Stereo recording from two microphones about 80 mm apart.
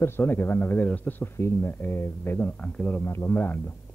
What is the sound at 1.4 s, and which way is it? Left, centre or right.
Speech, left.